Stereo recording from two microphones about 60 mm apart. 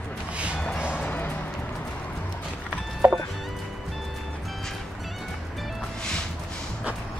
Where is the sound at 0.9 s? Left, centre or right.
Left.